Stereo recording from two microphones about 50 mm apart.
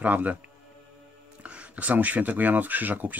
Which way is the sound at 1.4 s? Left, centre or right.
Right.